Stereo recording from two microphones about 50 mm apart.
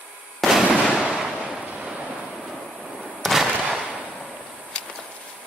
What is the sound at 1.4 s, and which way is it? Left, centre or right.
Waves, centre.